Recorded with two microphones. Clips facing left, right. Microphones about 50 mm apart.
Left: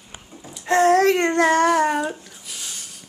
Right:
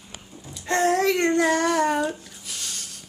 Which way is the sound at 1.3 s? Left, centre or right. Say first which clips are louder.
Left 4 dB; left.